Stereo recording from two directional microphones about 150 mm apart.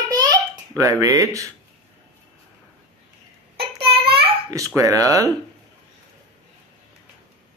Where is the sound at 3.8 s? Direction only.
35° right (ahead or behind).